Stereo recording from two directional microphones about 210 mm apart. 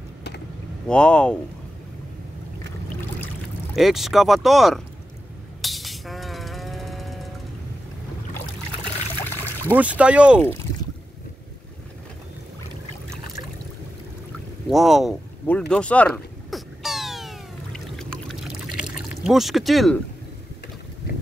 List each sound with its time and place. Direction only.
0.8 s speech: 5° left (ahead or behind)
3.7 s speech: centre (ahead or behind)
5.6 s music: centre (ahead or behind)
9.7 s speech: 5° right (ahead or behind)
14.7 s speech: centre (ahead or behind)
15.7 s cat: 5° left (ahead or behind)
19.2 s speech: centre (ahead or behind)